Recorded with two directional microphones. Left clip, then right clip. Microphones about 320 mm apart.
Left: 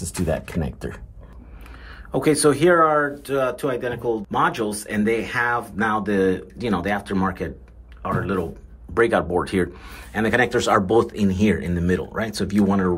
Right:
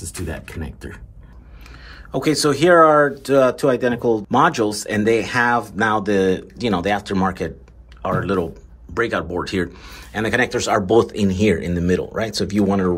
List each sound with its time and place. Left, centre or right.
0.0 s speech: centre
2.1 s speech: centre